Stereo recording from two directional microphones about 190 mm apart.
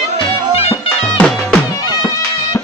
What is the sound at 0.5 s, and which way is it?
Music, 30° left (ahead or behind).